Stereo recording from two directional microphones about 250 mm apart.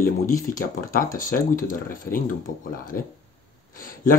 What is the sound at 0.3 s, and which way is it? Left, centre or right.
Speech, left.